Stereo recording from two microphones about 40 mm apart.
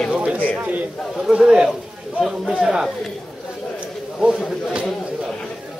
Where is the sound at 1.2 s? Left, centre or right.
Centre.